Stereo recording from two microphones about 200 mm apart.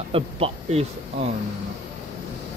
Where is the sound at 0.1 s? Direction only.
30° right (ahead or behind).